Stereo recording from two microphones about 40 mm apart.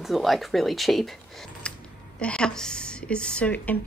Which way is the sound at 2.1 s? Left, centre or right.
Left.